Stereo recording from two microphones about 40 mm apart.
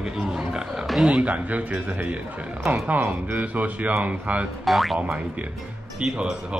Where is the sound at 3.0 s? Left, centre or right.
Right.